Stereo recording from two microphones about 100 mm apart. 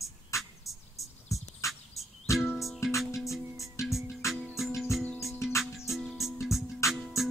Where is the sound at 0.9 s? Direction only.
30° left (ahead or behind).